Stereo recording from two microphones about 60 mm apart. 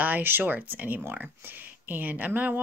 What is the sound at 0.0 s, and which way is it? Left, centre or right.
Speech, right.